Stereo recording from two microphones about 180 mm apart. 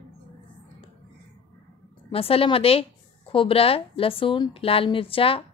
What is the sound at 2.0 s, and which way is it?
A woman's voice, 30° left (ahead or behind).